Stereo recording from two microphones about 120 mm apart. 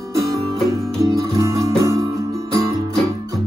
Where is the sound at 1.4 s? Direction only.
25° right (ahead or behind).